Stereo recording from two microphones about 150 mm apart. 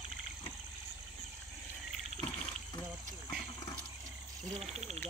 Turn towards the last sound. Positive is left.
turn(degrees=-45)  # may be behind; listen again after turning